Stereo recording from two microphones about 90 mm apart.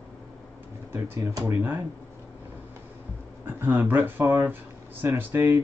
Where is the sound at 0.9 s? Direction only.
25° right (ahead or behind).